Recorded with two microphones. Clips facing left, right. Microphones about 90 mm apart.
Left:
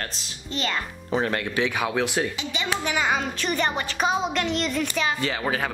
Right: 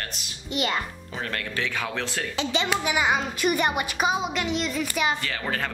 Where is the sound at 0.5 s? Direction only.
15° right (ahead or behind).